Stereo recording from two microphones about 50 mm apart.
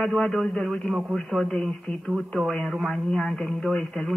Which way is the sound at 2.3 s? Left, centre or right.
Centre.